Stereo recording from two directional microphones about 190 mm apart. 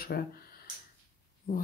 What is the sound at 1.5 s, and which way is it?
Speech, 45° left (ahead or behind).